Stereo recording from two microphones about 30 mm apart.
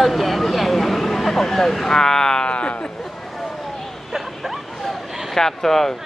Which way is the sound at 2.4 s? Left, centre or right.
Left.